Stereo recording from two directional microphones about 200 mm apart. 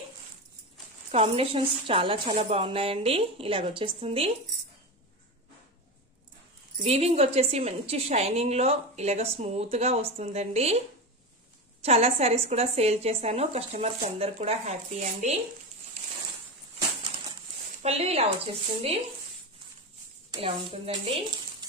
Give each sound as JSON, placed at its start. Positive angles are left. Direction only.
{"t": 1.1, "sound": "a woman's voice", "side_deg": -30}
{"t": 6.8, "sound": "a woman's voice", "side_deg": -30}
{"t": 11.8, "sound": "a woman's voice", "side_deg": -30}
{"t": 17.8, "sound": "a woman's voice", "side_deg": -30}
{"t": 20.2, "sound": "speech", "side_deg": -25}